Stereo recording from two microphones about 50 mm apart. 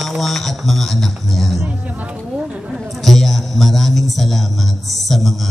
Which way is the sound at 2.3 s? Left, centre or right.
Centre.